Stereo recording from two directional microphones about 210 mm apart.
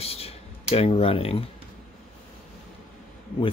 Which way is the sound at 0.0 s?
30° left (ahead or behind).